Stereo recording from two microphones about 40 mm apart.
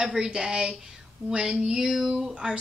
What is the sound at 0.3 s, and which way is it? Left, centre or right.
Speech, centre.